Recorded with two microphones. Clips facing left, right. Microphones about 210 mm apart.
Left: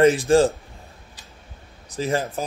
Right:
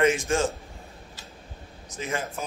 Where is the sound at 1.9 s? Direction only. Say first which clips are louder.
Left 7 dB; 35° left (ahead or behind).